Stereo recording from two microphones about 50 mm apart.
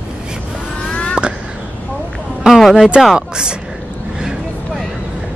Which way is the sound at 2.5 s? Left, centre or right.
Centre.